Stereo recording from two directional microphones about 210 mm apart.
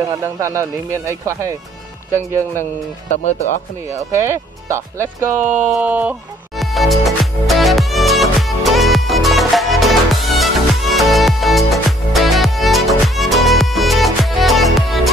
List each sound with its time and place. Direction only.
0.1 s speech: 15° right (ahead or behind)
3.1 s speech: 35° left (ahead or behind)
4.1 s music: 15° right (ahead or behind)